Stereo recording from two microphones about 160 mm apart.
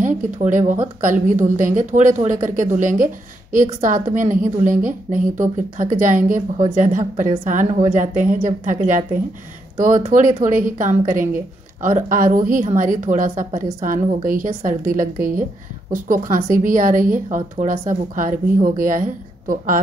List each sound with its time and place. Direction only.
0.0 s a woman's voice: 50° right (ahead or behind)